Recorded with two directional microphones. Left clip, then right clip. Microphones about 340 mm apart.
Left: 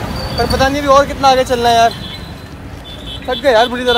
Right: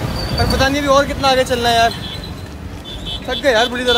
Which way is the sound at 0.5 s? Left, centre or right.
Centre.